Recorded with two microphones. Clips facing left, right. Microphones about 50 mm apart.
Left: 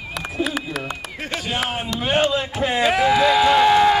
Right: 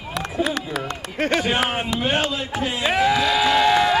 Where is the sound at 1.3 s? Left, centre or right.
Right.